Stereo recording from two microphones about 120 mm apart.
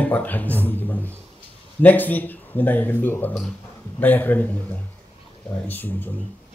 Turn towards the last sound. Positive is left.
turn(degrees=15)  # may be behind; listen again after turning